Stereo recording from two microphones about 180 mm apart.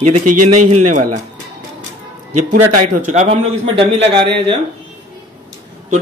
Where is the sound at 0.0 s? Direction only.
45° right (ahead or behind).